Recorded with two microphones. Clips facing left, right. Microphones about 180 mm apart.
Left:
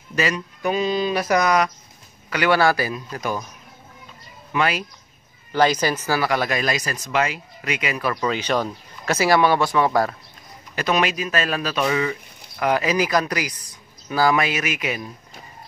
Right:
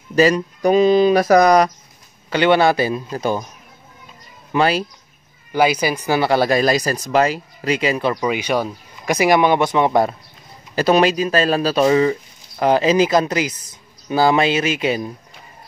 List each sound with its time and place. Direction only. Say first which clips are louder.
0.1 s speech: right 9 dB; 35° right (ahead or behind)
2.2 s speech: right 4 dB; 25° right (ahead or behind)
4.5 s speech: right 5 dB; 30° right (ahead or behind)
5.5 s speech: right 2 dB; 10° right (ahead or behind); by 8.2 s 30° right (ahead or behind)
8.2 s speech: right 3 dB; 10° right (ahead or behind)
10.8 s speech: right 7 dB; 35° right (ahead or behind)